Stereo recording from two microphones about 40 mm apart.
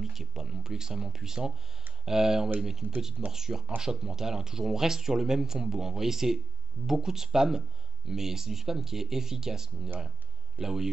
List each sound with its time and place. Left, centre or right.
0.0 s speech: centre
2.8 s speech: right
3.3 s speech: centre